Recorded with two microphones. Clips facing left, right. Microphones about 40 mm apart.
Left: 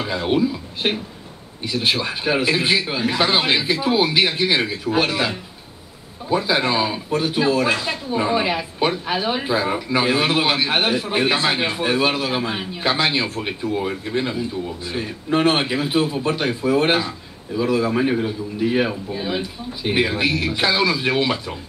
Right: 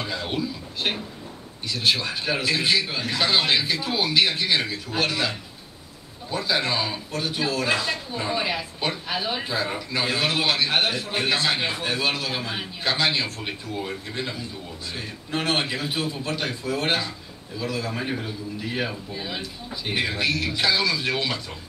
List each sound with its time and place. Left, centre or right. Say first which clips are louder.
0.0 s a man's voice: left 8 dB; centre